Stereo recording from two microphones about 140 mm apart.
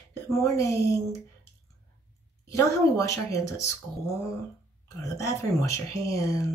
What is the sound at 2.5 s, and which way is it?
Speech, 20° left (ahead or behind).